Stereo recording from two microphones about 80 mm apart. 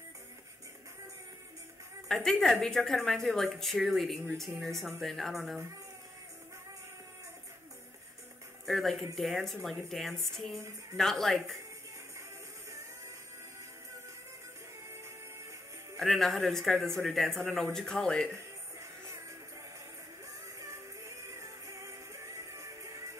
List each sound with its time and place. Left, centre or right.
2.0 s speech: centre
8.6 s speech: centre
16.0 s speech: centre
21.3 s music: right